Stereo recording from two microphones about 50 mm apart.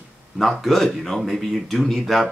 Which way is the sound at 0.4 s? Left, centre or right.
Centre.